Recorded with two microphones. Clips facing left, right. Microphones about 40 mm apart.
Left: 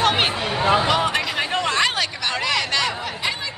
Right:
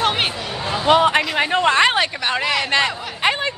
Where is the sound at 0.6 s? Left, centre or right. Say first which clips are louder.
Left 8 dB; left.